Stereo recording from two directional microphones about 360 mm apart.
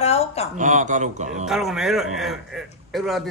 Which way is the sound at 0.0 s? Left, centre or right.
Centre.